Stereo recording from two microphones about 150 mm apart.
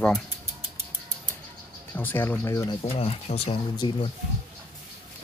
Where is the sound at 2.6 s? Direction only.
40° left (ahead or behind).